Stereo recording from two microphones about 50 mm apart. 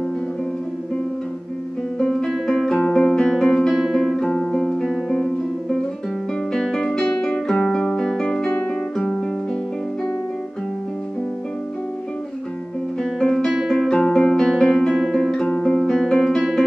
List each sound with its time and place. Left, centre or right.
2.0 s music: centre
3.7 s music: centre
4.0 s music: centre
13.0 s music: centre
13.5 s music: centre
13.8 s music: centre
15.0 s music: centre
15.5 s music: centre